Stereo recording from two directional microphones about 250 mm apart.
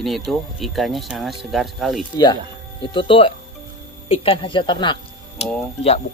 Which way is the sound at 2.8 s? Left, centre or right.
Centre.